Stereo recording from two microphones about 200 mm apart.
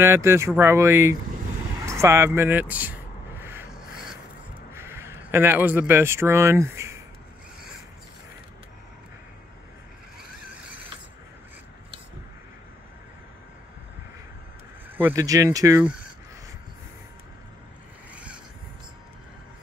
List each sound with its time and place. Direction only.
0.0 s speech: 15° right (ahead or behind)
1.9 s a sound: 15° right (ahead or behind)
4.7 s a man's voice: 10° right (ahead or behind)
15.0 s speech: 15° right (ahead or behind)